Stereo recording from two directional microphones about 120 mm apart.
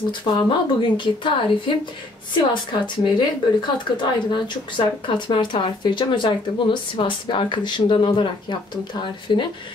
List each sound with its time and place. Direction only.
0.2 s speech: 40° left (ahead or behind)